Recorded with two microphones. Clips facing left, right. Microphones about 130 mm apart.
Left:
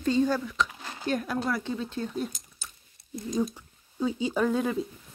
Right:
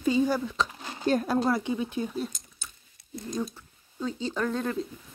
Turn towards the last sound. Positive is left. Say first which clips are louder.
# left 3 dB
turn(degrees=5)  # may be behind; listen again after turning